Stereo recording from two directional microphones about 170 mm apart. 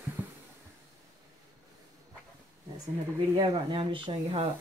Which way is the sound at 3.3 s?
30° right (ahead or behind).